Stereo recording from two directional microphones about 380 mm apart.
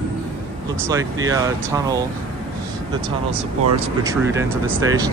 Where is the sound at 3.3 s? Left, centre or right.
Centre.